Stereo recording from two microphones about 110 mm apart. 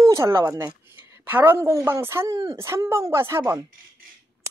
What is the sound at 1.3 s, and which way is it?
Speech, 20° right (ahead or behind).